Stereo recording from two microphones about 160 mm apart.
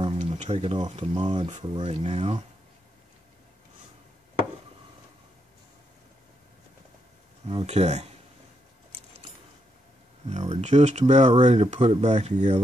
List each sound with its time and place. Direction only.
0.0 s a sound: 40° right (ahead or behind)
1.1 s speech: 35° right (ahead or behind)
7.4 s speech: 40° right (ahead or behind)
10.3 s speech: 45° right (ahead or behind)